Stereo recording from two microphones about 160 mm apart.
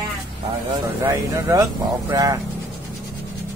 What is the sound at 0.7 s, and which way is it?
Speech, 15° right (ahead or behind).